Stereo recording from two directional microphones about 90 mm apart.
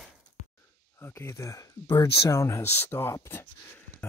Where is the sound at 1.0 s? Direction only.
30° left (ahead or behind).